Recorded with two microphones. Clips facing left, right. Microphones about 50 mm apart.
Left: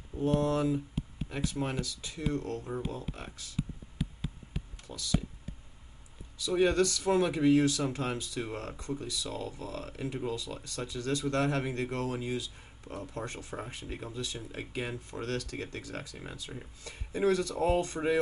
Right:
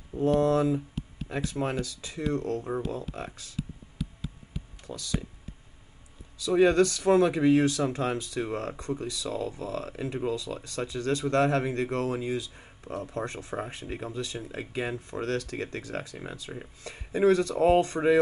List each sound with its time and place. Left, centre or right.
0.2 s speech: right
4.8 s speech: right
6.5 s speech: right
9.6 s speech: right